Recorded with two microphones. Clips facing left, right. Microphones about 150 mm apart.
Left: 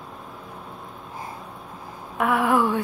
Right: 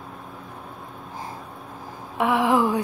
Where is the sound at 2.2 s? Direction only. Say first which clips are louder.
Right 1 dB; 20° right (ahead or behind).